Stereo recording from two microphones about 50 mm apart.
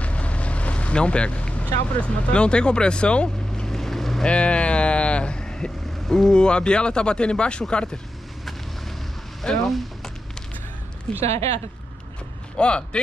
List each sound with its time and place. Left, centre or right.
0.0 s speech: left
3.6 s boat: centre
4.2 s speech: left
9.4 s speech: centre
12.5 s speech: centre